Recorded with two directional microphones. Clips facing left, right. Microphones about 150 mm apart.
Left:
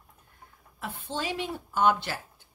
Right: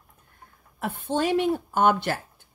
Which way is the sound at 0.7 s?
55° right (ahead or behind).